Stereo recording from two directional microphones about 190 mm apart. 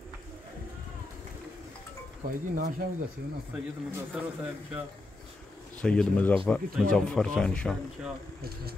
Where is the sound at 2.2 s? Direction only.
50° right (ahead or behind).